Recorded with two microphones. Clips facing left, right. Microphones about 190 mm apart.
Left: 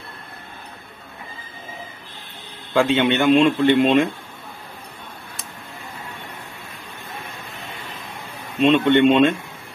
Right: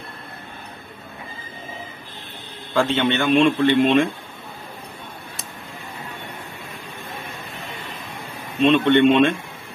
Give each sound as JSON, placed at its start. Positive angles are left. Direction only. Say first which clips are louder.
{"t": 2.7, "sound": "a man's voice", "louder": "left 2 dB", "side_deg": 15}
{"t": 8.6, "sound": "a man's voice", "louder": "even", "side_deg": 25}